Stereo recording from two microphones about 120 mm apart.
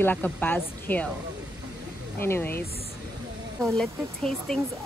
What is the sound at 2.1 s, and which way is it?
Speech, 20° left (ahead or behind).